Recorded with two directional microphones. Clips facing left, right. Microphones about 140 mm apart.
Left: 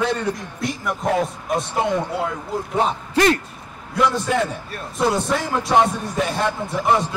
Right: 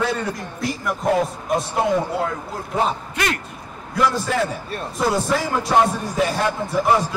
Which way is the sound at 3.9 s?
Centre (ahead or behind).